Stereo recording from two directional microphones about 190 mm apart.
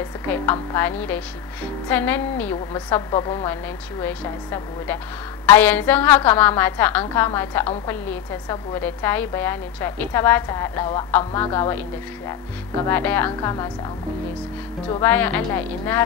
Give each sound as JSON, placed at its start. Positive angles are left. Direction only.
{"t": 0.3, "sound": "a woman's voice", "side_deg": 10}
{"t": 3.1, "sound": "a woman's voice", "side_deg": 20}
{"t": 12.8, "sound": "a woman's voice", "side_deg": 10}
{"t": 15.0, "sound": "a woman's voice", "side_deg": 10}